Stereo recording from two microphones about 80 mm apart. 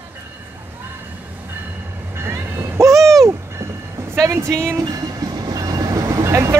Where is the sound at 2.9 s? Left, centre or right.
Centre.